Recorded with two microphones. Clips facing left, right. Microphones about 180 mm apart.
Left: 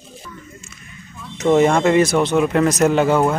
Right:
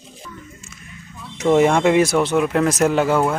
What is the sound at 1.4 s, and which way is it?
A man's voice, 5° right (ahead or behind).